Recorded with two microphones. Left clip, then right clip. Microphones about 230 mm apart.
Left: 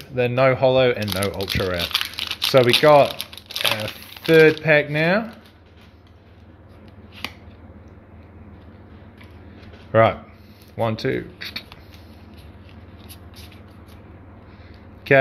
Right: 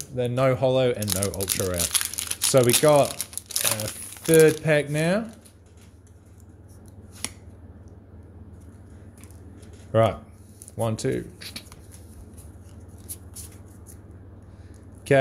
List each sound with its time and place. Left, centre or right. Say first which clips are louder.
0.1 s speech: left 5 dB; centre
9.9 s speech: left 5 dB; centre
10.7 s a sound: left 4 dB; centre